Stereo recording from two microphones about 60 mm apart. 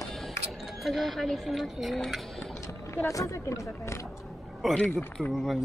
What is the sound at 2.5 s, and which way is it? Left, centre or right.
Speech, left.